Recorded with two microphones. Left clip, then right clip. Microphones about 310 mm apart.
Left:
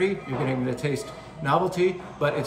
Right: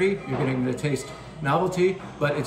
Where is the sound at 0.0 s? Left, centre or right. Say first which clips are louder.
Right 2 dB; centre.